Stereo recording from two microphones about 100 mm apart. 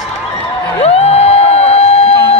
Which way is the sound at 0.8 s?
90° left.